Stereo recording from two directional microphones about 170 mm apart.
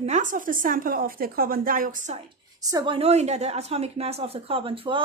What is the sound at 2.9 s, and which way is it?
Speech, 40° right (ahead or behind).